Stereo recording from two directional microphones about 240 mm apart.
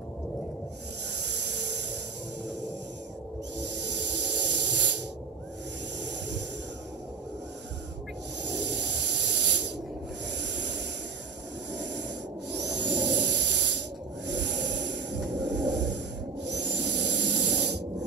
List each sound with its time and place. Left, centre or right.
1.2 s vehicle: right
3.5 s hiss: right
8.4 s hiss: right
10.4 s a sound: right
11.7 s snort: right
12.5 s a sound: right
16.7 s spray: right